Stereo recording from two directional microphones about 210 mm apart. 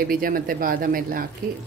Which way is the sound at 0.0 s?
45° right (ahead or behind).